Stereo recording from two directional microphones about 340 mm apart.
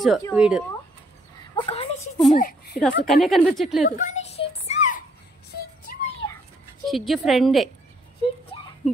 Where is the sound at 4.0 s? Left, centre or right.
Centre.